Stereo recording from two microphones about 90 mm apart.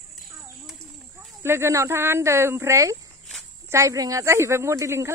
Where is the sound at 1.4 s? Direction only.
30° right (ahead or behind).